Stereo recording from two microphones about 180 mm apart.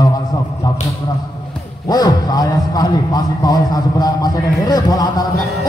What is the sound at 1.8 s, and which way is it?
A man's voice, 20° left (ahead or behind).